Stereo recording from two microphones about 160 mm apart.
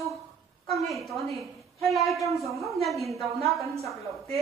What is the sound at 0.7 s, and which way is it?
A woman's voice, centre (ahead or behind).